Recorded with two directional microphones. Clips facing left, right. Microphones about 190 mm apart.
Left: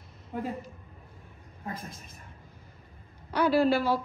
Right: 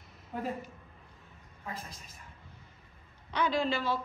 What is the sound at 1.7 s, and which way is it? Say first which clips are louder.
Speech: left 4 dB; 45° left (ahead or behind).